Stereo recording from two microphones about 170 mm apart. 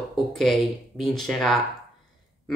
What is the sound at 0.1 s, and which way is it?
Speech, centre (ahead or behind).